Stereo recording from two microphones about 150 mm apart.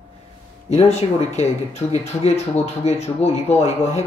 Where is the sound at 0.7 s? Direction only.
45° left (ahead or behind).